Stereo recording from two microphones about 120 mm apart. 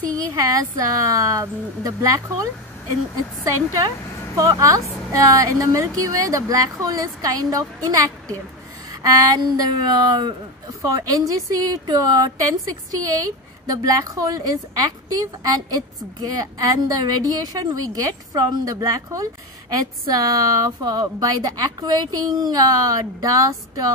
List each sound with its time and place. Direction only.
0.3 s a woman's voice: 30° right (ahead or behind)
3.4 s a woman's voice: 25° right (ahead or behind)